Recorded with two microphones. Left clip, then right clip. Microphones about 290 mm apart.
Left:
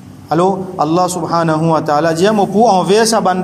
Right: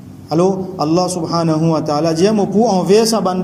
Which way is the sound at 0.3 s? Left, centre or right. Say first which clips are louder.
Left 2 dB; left.